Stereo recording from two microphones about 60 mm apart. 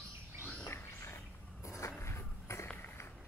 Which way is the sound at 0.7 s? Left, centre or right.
Left.